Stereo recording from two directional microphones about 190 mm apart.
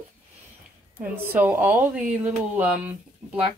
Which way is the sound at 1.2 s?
10° right (ahead or behind).